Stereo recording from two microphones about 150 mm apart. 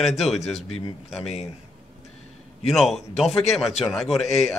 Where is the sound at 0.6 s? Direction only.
40° left (ahead or behind).